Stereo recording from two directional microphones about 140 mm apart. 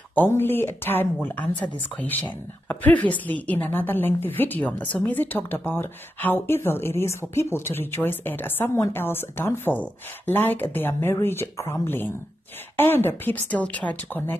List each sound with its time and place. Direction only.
0.1 s a woman's voice: 15° left (ahead or behind)